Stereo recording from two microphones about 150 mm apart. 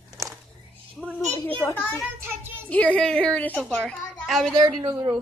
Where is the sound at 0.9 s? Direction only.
10° left (ahead or behind).